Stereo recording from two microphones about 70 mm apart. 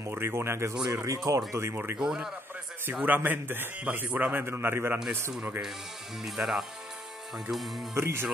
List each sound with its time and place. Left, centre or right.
0.0 s speech: right
2.0 s a man's voice: centre
2.9 s a man's voice: centre
3.2 s a man's voice: right
6.2 s speech: centre
7.9 s speech: right